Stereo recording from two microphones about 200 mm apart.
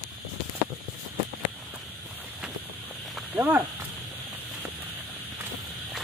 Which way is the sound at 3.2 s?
10° right (ahead or behind).